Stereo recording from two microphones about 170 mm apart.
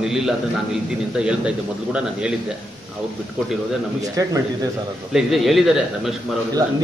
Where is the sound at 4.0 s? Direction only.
20° right (ahead or behind).